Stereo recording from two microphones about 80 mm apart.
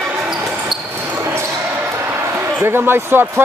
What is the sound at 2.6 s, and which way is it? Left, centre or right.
Speech, right.